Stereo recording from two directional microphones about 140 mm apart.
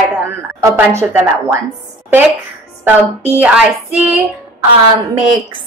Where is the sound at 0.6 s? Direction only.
20° right (ahead or behind).